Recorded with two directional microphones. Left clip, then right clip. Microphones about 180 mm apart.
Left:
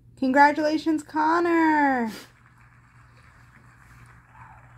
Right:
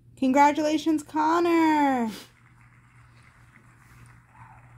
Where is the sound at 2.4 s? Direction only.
5° left (ahead or behind).